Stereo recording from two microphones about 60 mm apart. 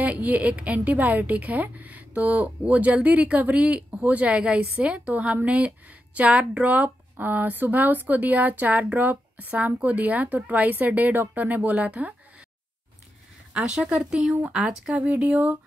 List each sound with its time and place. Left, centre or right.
0.0 s a woman's voice: right
13.5 s speech: centre
15.0 s a woman's voice: right